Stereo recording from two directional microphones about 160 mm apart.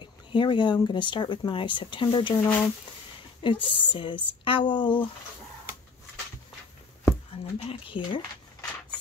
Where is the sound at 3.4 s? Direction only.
30° left (ahead or behind).